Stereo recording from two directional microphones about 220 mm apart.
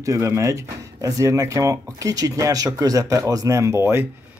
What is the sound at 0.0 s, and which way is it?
Speech, 15° right (ahead or behind).